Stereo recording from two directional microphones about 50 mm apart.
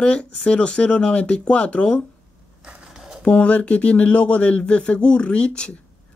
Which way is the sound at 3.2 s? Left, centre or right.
Left.